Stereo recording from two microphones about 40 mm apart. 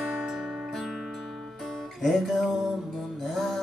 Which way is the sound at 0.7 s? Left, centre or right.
Centre.